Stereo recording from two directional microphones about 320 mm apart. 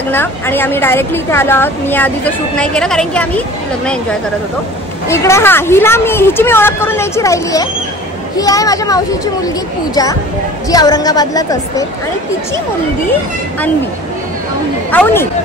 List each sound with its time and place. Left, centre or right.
0.1 s a woman's voice: centre
5.0 s a woman's voice: centre
10.7 s a woman's voice: centre
14.9 s speech: centre